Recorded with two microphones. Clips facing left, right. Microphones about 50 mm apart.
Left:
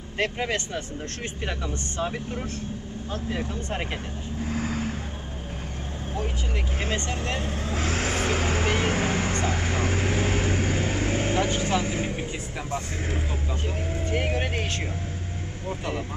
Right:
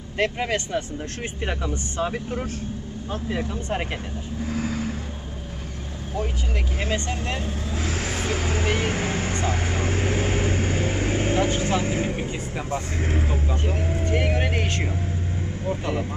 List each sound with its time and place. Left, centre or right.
0.2 s speech: centre
4.5 s vehicle: left
7.3 s speech: left
8.8 s vehicle: centre
9.3 s vehicle: centre
11.4 s speech: centre
12.0 s speech: centre
12.7 s speech: right
14.0 s vehicle: right
15.6 s speech: centre